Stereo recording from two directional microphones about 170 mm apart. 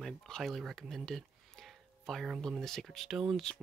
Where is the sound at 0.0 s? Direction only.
Centre (ahead or behind).